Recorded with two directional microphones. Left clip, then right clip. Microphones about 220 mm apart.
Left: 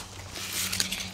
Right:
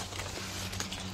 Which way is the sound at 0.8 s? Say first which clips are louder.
Left 9 dB; 35° left (ahead or behind).